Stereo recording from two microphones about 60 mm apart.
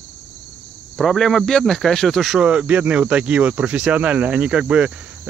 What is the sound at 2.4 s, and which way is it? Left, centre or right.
Speech, centre.